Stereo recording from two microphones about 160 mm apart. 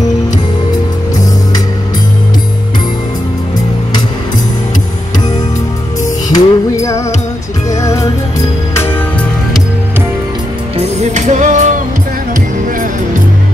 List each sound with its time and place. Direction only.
6.3 s music: 20° left (ahead or behind)
11.0 s music: 45° right (ahead or behind)